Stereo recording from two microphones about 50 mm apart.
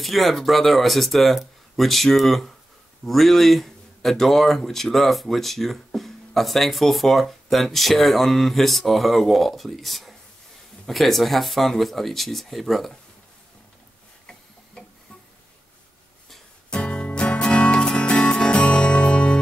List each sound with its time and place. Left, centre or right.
0.0 s speech: centre
14.8 s tick-tock: centre
16.7 s music: left